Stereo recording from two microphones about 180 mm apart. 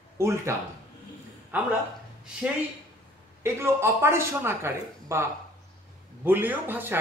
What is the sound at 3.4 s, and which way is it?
A man's voice, 15° right (ahead or behind).